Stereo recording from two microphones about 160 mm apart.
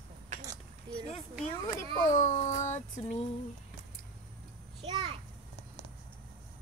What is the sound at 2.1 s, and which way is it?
Child singing, 50° left (ahead or behind).